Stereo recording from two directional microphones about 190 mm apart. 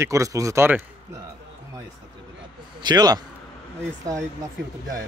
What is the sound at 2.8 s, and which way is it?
Speech, 20° right (ahead or behind).